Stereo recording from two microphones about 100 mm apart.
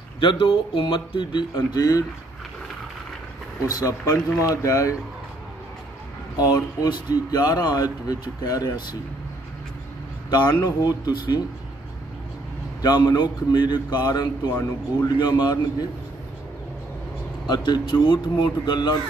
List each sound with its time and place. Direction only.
0.2 s speech: 55° left (ahead or behind); by 2.0 s 40° left (ahead or behind)
3.6 s speech: 40° left (ahead or behind)
6.3 s speech: 40° left (ahead or behind)
10.3 s speech: 45° left (ahead or behind)
12.8 s speech: 40° left (ahead or behind)
17.5 s speech: 45° left (ahead or behind)